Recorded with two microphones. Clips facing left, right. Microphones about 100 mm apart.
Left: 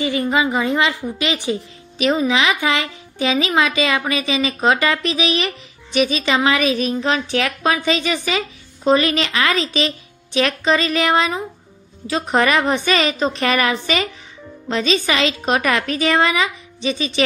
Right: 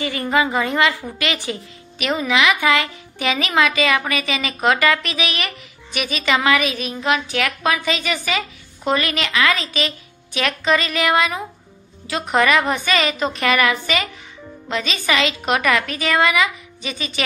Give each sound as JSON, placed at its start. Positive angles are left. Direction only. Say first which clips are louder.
{"t": 0.0, "sound": "a woman's voice", "louder": "left 1 dB", "side_deg": 20}